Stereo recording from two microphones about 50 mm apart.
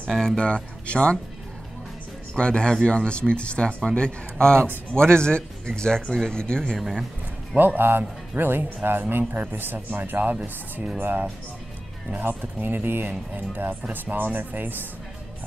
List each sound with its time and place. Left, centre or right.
0.4 s speech: left
2.3 s speech: centre
7.5 s speech: right